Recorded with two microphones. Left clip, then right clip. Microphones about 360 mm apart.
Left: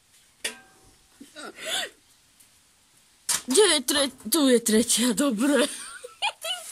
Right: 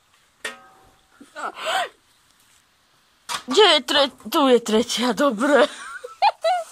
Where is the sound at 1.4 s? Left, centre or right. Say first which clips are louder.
Right 7 dB; right.